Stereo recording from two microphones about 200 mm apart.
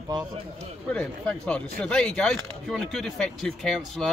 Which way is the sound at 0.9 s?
5° left (ahead or behind).